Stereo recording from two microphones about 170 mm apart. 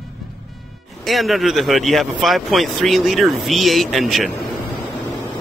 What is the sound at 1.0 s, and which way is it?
Speech, centre (ahead or behind).